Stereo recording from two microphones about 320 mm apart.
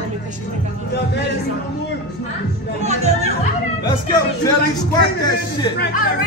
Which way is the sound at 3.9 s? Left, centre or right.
Centre.